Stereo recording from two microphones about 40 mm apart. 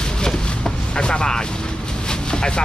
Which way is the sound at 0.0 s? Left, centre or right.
Centre.